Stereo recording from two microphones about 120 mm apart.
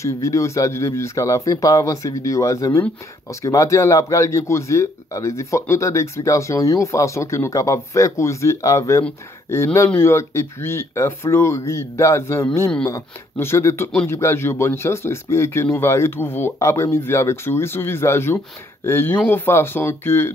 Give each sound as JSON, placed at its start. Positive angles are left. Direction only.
{"t": 0.0, "sound": "a man's voice", "side_deg": 25}